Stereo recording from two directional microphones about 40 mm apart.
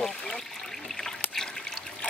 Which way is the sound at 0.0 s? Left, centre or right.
Centre.